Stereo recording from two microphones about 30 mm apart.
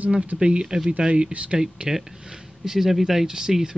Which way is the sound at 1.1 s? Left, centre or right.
Right.